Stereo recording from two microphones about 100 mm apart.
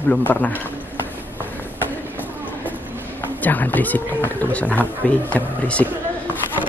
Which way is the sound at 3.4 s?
15° left (ahead or behind).